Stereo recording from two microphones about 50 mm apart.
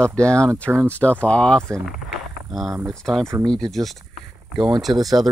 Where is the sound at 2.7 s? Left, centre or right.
Right.